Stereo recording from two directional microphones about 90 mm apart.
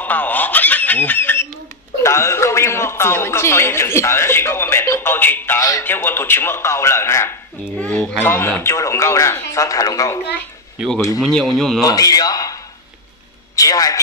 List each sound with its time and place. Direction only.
0.0 s a man's voice: 20° left (ahead or behind)
5.6 s a man's voice: 40° left (ahead or behind)
5.9 s a man's voice: 25° left (ahead or behind)
7.8 s speech: 15° left (ahead or behind)
8.2 s a man's voice: 25° left (ahead or behind)
11.2 s speech: 5° left (ahead or behind)
11.8 s speech: 45° left (ahead or behind)
13.6 s a man's voice: 40° left (ahead or behind)